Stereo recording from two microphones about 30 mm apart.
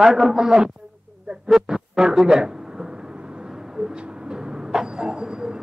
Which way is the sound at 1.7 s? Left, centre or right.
Centre.